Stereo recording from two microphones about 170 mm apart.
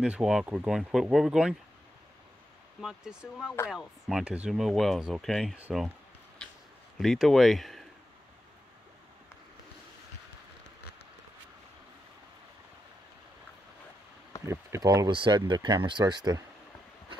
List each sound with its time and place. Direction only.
0.0 s speech: 5° right (ahead or behind)
2.8 s speech: 5° right (ahead or behind)
6.4 s a sound: 5° left (ahead or behind)
7.0 s speech: centre (ahead or behind)
14.4 s speech: 15° right (ahead or behind)